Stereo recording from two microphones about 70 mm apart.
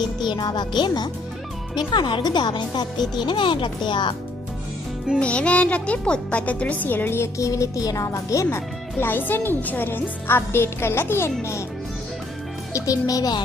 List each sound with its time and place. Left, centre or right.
0.0 s a child's voice: left
5.2 s speech: centre
7.3 s speech: left
12.7 s a child's voice: left